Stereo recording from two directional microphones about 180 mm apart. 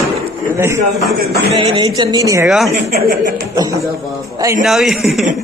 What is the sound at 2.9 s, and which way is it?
Speech, 50° right (ahead or behind).